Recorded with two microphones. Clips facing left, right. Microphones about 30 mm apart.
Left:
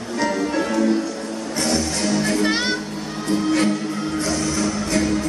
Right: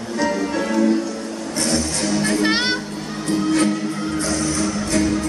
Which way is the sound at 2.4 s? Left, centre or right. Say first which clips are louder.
Right 1 dB; right.